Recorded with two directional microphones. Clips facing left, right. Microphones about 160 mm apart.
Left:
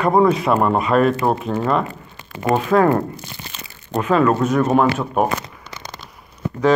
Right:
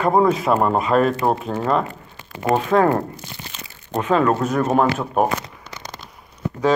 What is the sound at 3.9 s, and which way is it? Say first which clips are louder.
Speech: left 2 dB; 30° right (ahead or behind).